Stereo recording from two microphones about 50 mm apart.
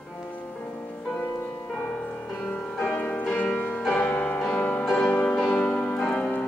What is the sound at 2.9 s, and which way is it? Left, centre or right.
Music, left.